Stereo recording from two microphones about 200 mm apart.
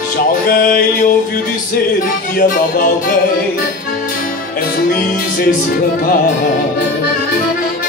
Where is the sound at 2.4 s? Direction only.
40° left (ahead or behind).